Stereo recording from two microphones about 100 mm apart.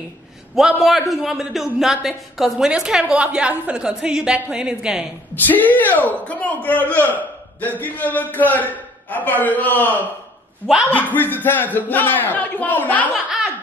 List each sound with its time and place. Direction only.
0.6 s a man's voice: centre (ahead or behind)
5.3 s a man's voice: 20° left (ahead or behind)